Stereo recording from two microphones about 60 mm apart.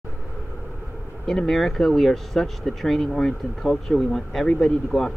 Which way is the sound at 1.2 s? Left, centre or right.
Centre.